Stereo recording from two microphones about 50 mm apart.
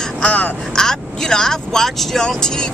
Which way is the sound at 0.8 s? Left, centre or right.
Centre.